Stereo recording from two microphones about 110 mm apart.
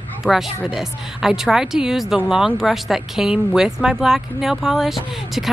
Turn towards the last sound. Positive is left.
turn(degrees=0)  # may be behind; listen again after turning